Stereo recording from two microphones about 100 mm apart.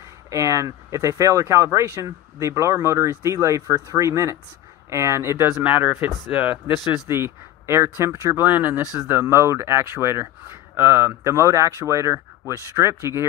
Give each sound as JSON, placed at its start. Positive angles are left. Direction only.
{"t": 0.3, "sound": "speech", "side_deg": -30}
{"t": 5.6, "sound": "speech", "side_deg": -15}
{"t": 7.1, "sound": "speech", "side_deg": -25}